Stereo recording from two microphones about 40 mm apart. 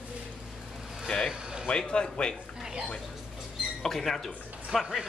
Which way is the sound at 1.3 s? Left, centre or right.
Right.